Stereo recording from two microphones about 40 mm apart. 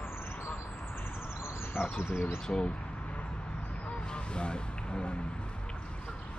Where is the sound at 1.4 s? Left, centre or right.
Left.